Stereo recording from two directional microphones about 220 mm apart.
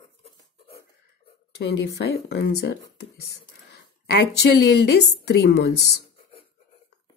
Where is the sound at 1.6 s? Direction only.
50° left (ahead or behind).